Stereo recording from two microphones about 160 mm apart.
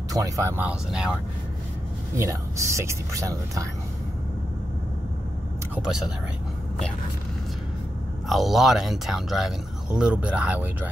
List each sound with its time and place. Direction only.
0.1 s speech: 20° right (ahead or behind)
2.1 s speech: 20° right (ahead or behind)
5.9 s speech: 5° right (ahead or behind)
8.3 s speech: centre (ahead or behind)